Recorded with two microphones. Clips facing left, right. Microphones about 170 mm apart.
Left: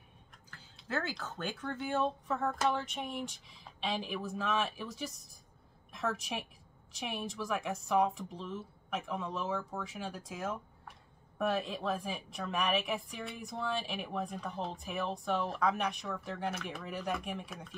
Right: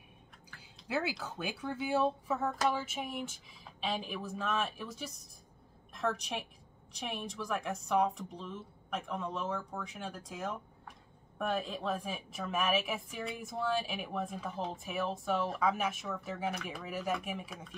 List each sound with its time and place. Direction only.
0.8 s speech: 10° right (ahead or behind)